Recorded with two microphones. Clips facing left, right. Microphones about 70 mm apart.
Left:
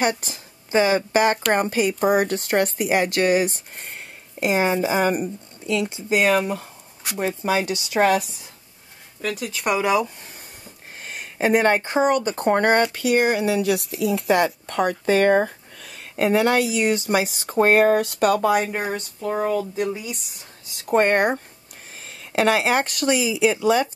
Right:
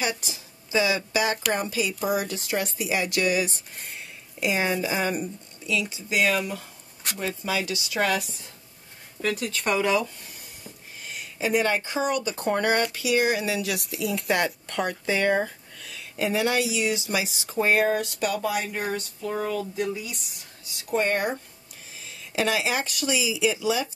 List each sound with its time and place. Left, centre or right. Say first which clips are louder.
0.0 s speech: left 7 dB; left
9.2 s speech: left 1 dB; centre
11.0 s speech: left 7 dB; left
14.4 s speech: left 6 dB; left
20.7 s speech: left 7 dB; left